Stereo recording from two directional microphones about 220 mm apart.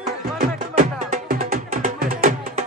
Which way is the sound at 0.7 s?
35° right (ahead or behind).